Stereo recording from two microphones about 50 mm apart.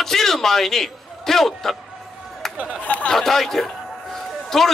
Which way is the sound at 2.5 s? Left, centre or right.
Right.